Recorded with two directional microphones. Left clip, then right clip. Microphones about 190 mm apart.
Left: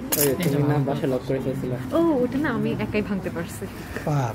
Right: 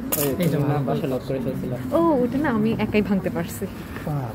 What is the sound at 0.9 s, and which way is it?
Speech, 15° left (ahead or behind).